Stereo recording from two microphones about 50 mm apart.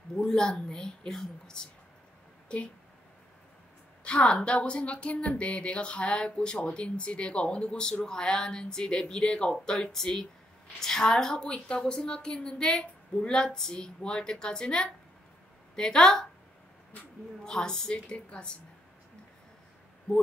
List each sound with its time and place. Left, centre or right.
0.3 s a woman's voice: centre
2.4 s a sound: left
4.0 s a woman's voice: left
17.5 s a woman's voice: centre